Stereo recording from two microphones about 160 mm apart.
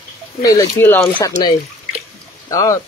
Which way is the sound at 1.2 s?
25° left (ahead or behind).